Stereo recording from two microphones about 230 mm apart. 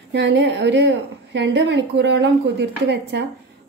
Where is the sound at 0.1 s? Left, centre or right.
Right.